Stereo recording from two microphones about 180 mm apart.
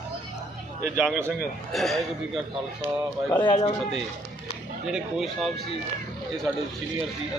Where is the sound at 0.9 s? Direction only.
Centre (ahead or behind).